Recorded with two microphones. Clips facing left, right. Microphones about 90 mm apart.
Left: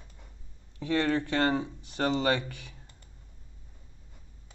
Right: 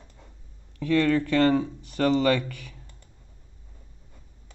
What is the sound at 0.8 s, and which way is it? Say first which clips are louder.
Speech: right 5 dB; 30° left (ahead or behind).